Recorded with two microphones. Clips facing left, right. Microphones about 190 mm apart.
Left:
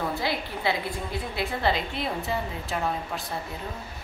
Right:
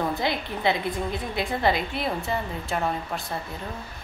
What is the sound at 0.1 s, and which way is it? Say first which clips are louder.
A woman's voice: right 2 dB; 20° right (ahead or behind).